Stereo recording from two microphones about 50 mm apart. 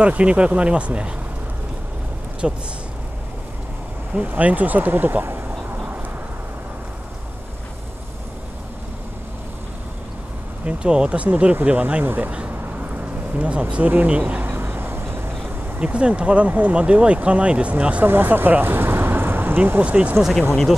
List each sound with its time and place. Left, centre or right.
0.0 s speech: right
2.4 s speech: centre
4.2 s speech: right
10.6 s speech: right
14.4 s a sound: right
15.8 s speech: right
18.0 s speech: right
19.8 s speech: right